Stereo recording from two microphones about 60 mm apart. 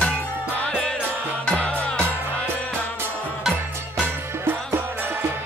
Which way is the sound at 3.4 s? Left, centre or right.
Centre.